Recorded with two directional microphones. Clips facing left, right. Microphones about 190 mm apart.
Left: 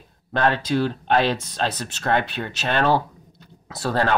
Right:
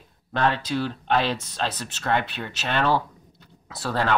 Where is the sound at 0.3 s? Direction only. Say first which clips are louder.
Left 3 dB; 45° left (ahead or behind).